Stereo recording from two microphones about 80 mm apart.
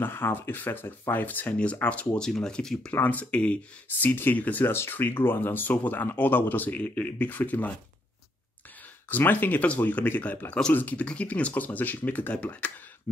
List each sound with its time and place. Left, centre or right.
0.0 s speech: left; by 2.9 s centre
2.9 s speech: centre
9.1 s speech: left